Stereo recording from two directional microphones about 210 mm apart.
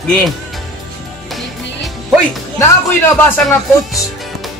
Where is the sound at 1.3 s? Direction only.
Centre (ahead or behind).